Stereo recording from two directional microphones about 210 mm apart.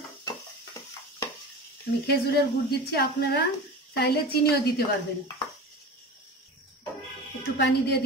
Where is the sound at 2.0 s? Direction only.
50° left (ahead or behind).